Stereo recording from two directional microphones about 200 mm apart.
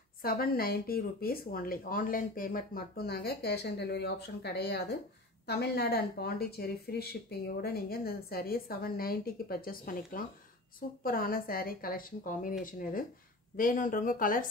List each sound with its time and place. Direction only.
0.2 s speech: 50° left (ahead or behind)